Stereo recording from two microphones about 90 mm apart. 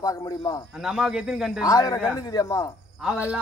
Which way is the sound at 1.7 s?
40° left (ahead or behind).